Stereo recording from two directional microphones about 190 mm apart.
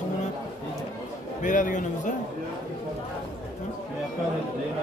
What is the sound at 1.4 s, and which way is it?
Speech, 45° left (ahead or behind).